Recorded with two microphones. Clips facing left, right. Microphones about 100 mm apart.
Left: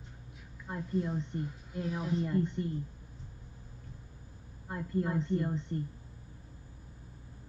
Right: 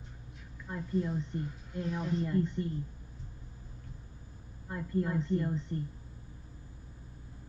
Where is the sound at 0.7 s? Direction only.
30° left (ahead or behind).